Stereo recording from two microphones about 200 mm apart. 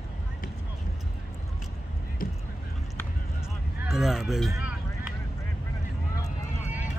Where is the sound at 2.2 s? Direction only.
45° left (ahead or behind).